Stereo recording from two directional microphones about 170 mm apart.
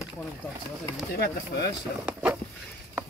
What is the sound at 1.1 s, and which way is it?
Speech, 75° left (ahead or behind).